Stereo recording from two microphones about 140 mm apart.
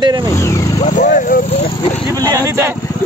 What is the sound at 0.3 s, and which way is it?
Speech, 20° left (ahead or behind).